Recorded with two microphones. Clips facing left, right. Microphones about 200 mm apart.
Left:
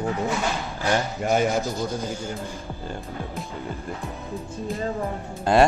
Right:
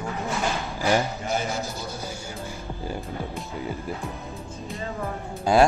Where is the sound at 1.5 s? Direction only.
15° left (ahead or behind).